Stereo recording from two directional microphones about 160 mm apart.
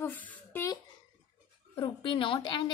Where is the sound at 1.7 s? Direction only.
30° left (ahead or behind).